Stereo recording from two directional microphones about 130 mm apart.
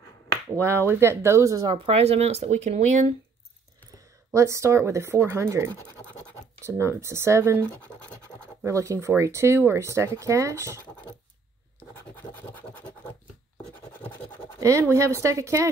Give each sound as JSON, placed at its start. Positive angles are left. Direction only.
{"t": 0.6, "sound": "speech", "side_deg": -20}
{"t": 1.9, "sound": "speech", "side_deg": -50}
{"t": 3.9, "sound": "speech", "side_deg": -25}
{"t": 12.2, "sound": "scratch", "side_deg": 15}
{"t": 14.6, "sound": "speech", "side_deg": -25}